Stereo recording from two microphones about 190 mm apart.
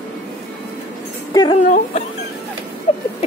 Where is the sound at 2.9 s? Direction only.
30° left (ahead or behind).